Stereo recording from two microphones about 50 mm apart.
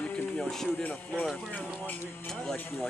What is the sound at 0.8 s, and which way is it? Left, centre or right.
Speech, left.